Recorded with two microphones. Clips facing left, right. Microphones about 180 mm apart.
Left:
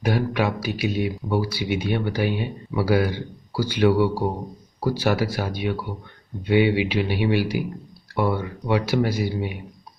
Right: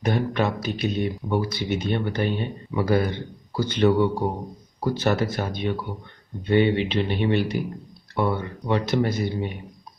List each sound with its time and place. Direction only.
0.0 s speech: 10° left (ahead or behind)